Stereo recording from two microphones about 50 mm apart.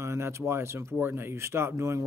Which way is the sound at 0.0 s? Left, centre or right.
Right.